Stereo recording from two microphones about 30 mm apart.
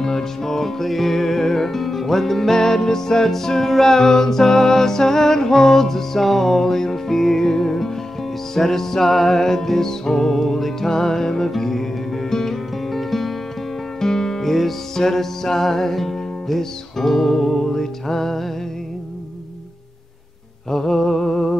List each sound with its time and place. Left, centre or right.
0.0 s music: centre
14.0 s music: centre
20.7 s music: centre